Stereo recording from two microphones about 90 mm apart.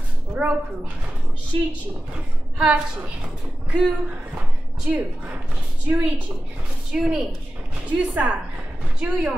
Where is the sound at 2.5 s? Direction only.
10° right (ahead or behind).